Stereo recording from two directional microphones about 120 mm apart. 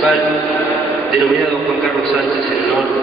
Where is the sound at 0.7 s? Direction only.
Centre (ahead or behind).